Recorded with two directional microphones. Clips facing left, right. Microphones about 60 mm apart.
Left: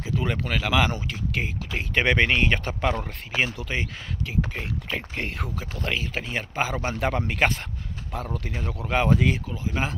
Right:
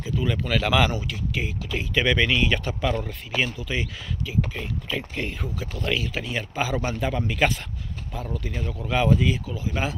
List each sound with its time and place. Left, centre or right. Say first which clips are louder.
0.0 s speech: right 1 dB; left
0.6 s speech: right 2 dB; centre
0.9 s speech: even; left
5.9 s speech: right 2 dB; left
7.0 s speech: left 1 dB; left
8.8 s speech: even; left
9.1 s speech: even; left
9.5 s speech: right 1 dB; left